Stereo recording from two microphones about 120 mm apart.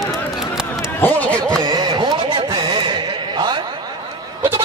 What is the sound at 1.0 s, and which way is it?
Chatter, 10° left (ahead or behind).